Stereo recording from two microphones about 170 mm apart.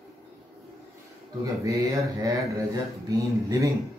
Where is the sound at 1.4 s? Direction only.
20° right (ahead or behind).